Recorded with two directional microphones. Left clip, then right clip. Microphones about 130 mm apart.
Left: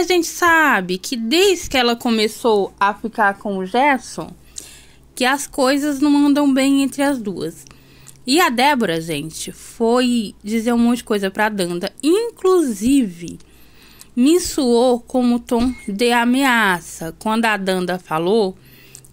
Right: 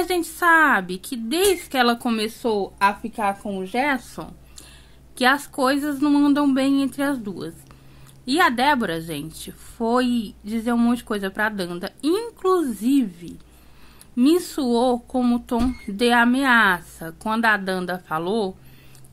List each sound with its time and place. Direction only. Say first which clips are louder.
0.0 s speech: left 5 dB; 10° left (ahead or behind)